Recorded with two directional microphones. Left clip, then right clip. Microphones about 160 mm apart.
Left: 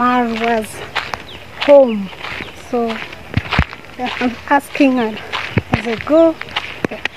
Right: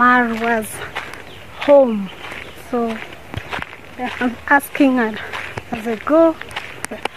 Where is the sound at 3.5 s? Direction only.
5° left (ahead or behind).